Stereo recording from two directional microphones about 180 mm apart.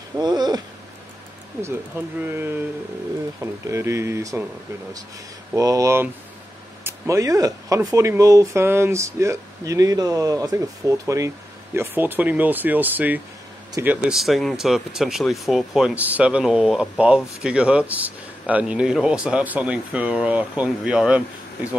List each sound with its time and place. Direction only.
0.2 s a sound: 25° right (ahead or behind)
1.6 s speech: 10° right (ahead or behind)
5.5 s speech: 20° right (ahead or behind)